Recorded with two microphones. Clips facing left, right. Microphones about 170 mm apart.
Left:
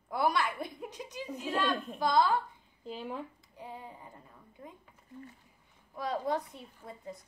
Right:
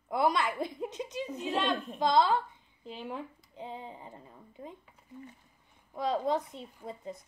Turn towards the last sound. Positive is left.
turn(degrees=-20)  # may be behind; listen again after turning